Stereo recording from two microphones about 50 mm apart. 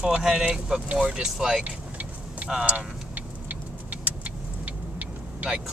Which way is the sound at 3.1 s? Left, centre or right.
Right.